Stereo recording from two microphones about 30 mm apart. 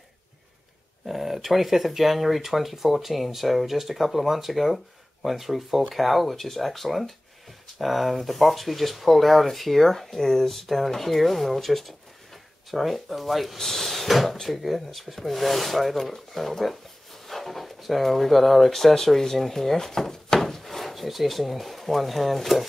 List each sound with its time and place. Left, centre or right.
1.0 s speech: centre
20.3 s speech: centre